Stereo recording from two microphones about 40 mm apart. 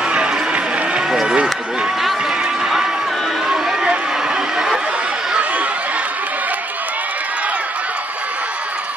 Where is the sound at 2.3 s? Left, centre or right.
Centre.